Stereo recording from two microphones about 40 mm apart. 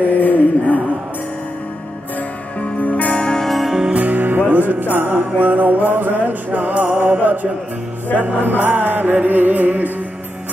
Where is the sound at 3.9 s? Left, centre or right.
Right.